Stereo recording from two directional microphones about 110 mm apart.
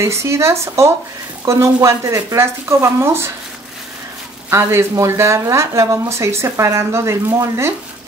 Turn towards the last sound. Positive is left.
turn(degrees=-25)  # may be behind; listen again after turning